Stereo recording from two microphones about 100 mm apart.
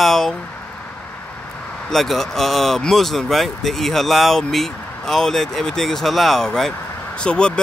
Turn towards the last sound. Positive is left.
turn(degrees=10)  # may be behind; listen again after turning